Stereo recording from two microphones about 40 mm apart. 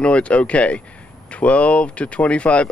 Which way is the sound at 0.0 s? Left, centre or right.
Left.